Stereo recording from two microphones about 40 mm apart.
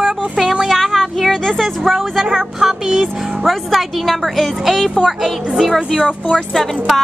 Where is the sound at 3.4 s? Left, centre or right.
Centre.